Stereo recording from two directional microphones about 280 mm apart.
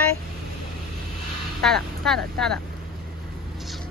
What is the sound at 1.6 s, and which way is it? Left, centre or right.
Speech, centre.